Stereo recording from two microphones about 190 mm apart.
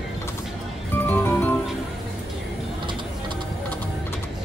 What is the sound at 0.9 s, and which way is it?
Music, 10° left (ahead or behind).